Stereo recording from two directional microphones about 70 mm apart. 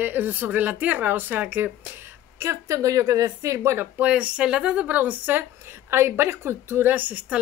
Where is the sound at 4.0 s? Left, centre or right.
Centre.